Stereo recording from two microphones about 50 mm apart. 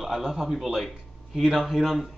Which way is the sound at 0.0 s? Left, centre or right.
Centre.